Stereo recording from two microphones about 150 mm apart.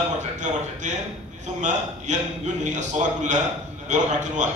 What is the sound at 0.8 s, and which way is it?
A man's voice, 55° right (ahead or behind).